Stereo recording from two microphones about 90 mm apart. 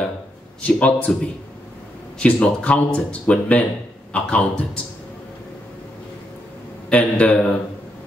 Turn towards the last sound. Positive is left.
turn(degrees=15)  # may be behind; listen again after turning